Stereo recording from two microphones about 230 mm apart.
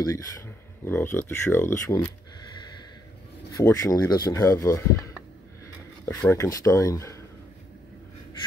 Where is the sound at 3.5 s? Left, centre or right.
Centre.